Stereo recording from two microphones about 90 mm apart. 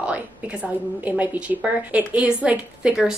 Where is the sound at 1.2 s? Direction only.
20° right (ahead or behind).